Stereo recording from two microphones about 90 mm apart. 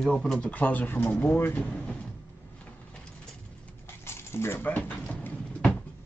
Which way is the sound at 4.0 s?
30° left (ahead or behind).